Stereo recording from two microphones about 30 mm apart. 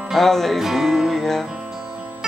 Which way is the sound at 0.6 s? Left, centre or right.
Centre.